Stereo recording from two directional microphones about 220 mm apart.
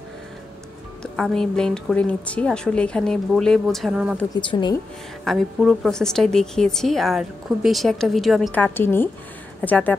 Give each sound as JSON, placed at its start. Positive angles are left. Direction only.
{"t": 1.1, "sound": "speech", "side_deg": 5}
{"t": 4.4, "sound": "speech", "side_deg": 20}
{"t": 5.2, "sound": "speech", "side_deg": 0}